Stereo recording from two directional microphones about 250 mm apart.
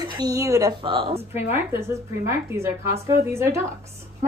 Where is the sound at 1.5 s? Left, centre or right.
Centre.